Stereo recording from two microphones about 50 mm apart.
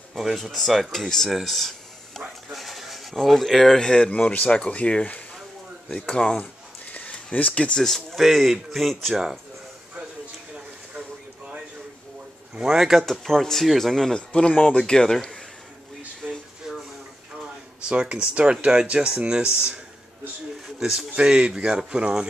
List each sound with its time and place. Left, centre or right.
0.1 s speech: centre; by 5.2 s left
5.9 s speech: centre
6.9 s a sound: left
7.3 s speech: left
7.8 s speech: centre
12.5 s speech: centre
13.0 s speech: centre
14.1 s speech: centre
16.3 s a sound: centre
17.8 s speech: right
21.1 s speech: centre